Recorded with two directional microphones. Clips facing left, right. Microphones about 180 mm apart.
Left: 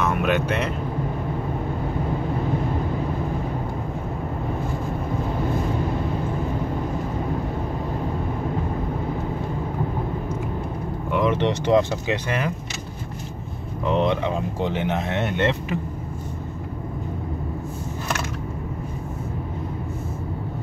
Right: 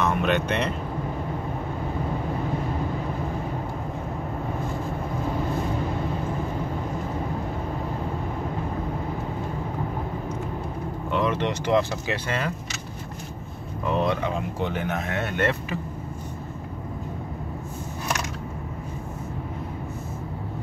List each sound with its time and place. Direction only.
0.0 s speech: 5° left (ahead or behind)
11.1 s speech: 15° left (ahead or behind)
13.8 s speech: 20° left (ahead or behind)